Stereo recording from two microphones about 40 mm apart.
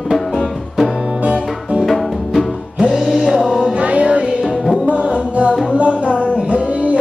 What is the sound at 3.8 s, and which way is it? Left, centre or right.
Music, right.